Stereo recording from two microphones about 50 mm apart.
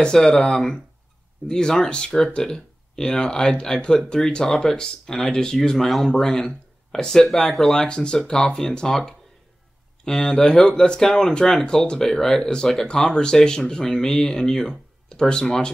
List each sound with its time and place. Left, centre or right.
0.0 s speech: centre
7.9 s speech: centre